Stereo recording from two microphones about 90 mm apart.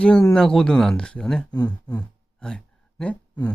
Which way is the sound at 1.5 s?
45° left (ahead or behind).